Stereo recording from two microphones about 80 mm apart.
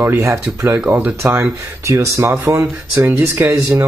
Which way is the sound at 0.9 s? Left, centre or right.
Right.